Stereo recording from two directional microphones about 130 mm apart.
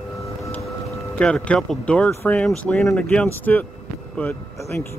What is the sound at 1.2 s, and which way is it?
Speech, 10° left (ahead or behind).